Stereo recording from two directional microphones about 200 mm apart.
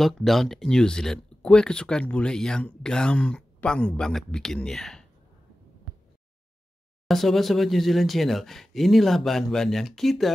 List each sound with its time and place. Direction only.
0.0 s speech: centre (ahead or behind)
7.1 s speech: centre (ahead or behind)